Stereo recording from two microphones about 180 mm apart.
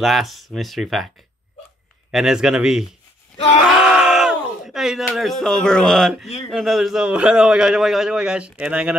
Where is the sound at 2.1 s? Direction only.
5° right (ahead or behind).